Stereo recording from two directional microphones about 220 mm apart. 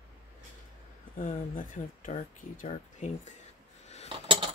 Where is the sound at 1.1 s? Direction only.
40° left (ahead or behind).